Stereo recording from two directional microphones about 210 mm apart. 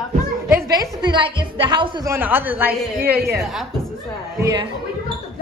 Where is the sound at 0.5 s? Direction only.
15° right (ahead or behind).